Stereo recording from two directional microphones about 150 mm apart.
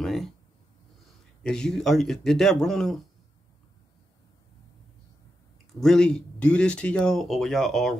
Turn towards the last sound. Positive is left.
turn(degrees=0)  # may be behind; listen again after turning